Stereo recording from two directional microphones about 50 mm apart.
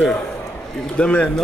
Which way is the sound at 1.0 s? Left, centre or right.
Left.